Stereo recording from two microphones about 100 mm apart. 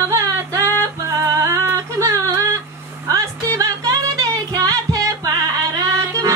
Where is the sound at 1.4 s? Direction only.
30° right (ahead or behind).